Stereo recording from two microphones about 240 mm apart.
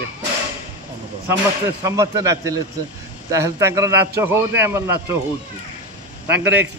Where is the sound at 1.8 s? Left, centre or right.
Centre.